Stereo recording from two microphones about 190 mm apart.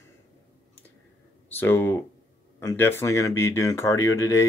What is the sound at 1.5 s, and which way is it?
Speech, 10° left (ahead or behind).